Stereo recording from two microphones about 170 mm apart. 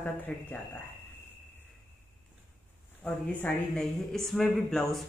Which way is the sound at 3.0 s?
5° left (ahead or behind).